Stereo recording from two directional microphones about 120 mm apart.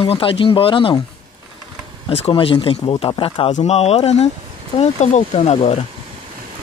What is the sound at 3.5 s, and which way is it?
Speech, 60° left (ahead or behind).